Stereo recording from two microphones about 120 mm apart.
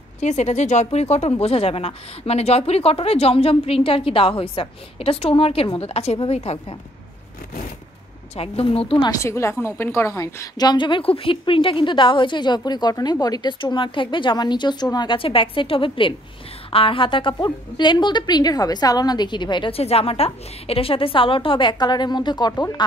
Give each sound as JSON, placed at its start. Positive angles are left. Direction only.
{"t": 0.2, "sound": "speech", "side_deg": 75}
{"t": 8.4, "sound": "a woman's voice", "side_deg": 55}
{"t": 9.1, "sound": "a woman's voice", "side_deg": 25}
{"t": 19.8, "sound": "a woman's voice", "side_deg": 55}